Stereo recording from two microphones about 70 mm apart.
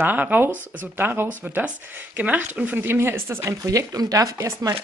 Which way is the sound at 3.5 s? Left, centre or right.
Right.